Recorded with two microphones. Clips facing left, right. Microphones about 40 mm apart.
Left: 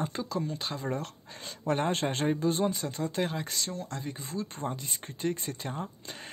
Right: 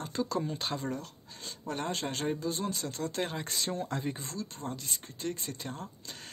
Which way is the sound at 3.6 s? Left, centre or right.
Centre.